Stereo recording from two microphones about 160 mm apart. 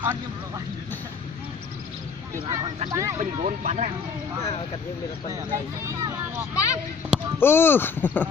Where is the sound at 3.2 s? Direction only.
50° right (ahead or behind).